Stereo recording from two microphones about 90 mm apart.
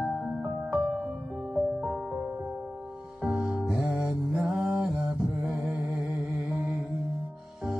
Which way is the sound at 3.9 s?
5° right (ahead or behind).